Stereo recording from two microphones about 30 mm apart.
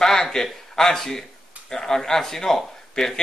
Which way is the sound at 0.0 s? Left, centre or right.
Centre.